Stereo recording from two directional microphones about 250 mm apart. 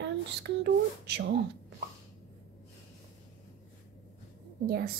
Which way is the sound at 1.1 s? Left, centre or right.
Right.